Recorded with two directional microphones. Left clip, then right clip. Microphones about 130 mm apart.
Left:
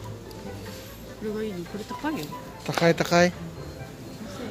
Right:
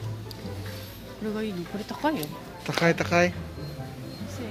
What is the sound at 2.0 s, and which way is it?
Speech, 60° right (ahead or behind).